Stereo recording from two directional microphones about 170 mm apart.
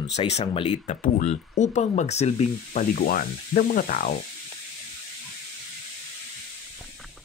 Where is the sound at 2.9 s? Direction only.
55° left (ahead or behind).